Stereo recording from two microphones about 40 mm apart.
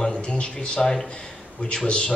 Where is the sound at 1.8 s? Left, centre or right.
Left.